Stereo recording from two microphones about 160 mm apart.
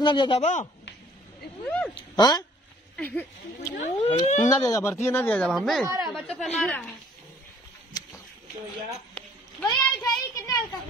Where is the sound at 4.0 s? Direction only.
45° left (ahead or behind).